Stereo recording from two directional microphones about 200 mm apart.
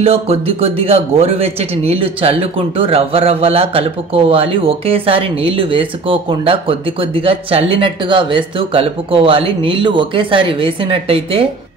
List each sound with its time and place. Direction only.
0.0 s a man's voice: 30° right (ahead or behind)